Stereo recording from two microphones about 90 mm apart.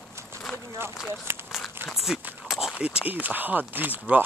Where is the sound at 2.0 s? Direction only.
5° right (ahead or behind).